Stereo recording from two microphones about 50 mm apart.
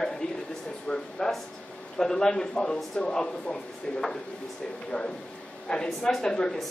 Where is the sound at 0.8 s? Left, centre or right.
Centre.